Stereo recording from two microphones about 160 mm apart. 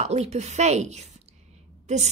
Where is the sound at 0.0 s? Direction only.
45° right (ahead or behind).